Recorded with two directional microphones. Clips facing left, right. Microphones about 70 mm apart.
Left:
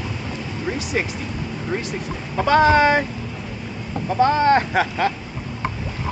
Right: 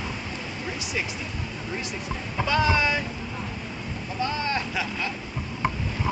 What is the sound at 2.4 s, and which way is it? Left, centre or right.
Speech, left.